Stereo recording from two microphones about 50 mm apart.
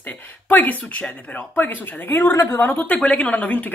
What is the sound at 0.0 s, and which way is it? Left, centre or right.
Speech, left.